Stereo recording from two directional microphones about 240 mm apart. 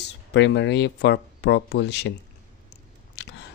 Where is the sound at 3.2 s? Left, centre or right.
Left.